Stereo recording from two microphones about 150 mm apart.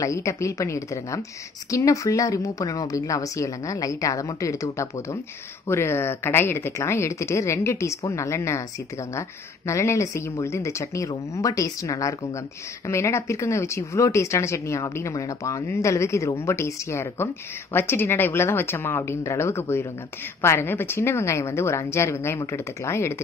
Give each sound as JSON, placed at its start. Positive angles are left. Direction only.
{"t": 0.0, "sound": "a woman's voice", "side_deg": 20}